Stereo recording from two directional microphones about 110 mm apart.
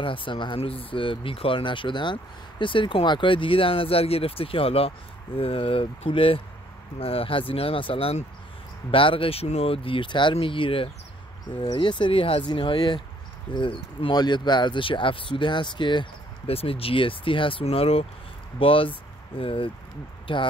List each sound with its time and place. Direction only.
0.0 s speech: 50° left (ahead or behind)
16.4 s speech: 60° left (ahead or behind)